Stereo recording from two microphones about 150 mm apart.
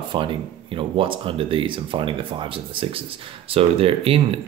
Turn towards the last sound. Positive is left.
turn(degrees=-40)  # may be behind; listen again after turning